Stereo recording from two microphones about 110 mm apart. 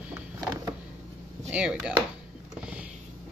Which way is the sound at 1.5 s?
10° right (ahead or behind).